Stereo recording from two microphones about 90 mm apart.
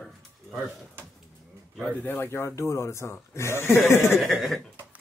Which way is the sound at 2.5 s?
30° left (ahead or behind).